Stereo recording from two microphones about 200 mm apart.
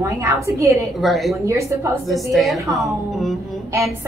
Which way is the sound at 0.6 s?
15° right (ahead or behind).